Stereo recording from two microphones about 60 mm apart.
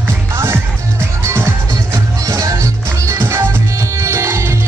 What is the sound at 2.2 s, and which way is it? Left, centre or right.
Music, right.